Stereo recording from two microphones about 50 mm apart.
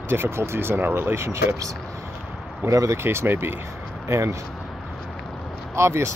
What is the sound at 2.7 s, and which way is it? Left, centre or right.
Speech, right.